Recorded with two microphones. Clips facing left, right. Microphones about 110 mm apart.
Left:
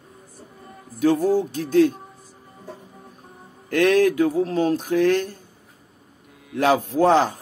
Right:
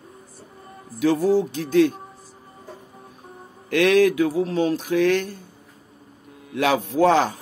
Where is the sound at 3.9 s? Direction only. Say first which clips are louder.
Right 1 dB; 40° left (ahead or behind).